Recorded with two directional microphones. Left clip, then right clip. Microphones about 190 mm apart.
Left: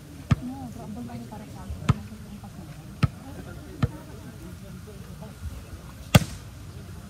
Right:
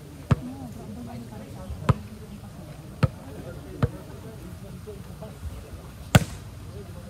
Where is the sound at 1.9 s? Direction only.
25° right (ahead or behind).